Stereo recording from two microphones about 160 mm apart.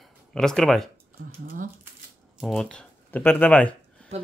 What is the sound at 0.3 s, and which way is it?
Speech, 5° left (ahead or behind).